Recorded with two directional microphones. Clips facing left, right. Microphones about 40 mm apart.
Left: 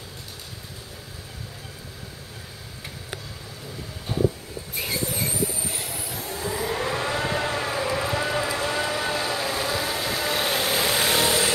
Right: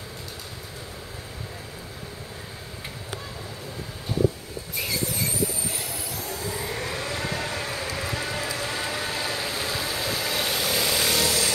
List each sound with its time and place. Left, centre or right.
4.8 s vehicle: centre
6.1 s vehicle: left
8.8 s vehicle: left
9.2 s vehicle: centre
9.5 s vehicle: left